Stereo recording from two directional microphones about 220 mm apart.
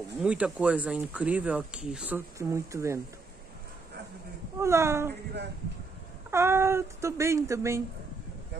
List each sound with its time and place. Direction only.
0.2 s speech: 5° right (ahead or behind)
4.6 s speech: 10° right (ahead or behind)
6.3 s speech: 10° right (ahead or behind)